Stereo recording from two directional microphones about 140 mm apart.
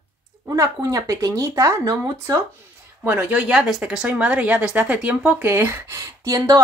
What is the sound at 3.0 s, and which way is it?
A woman's voice, 10° right (ahead or behind).